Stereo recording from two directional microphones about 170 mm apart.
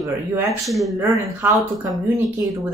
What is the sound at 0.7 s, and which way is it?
Speech, centre (ahead or behind).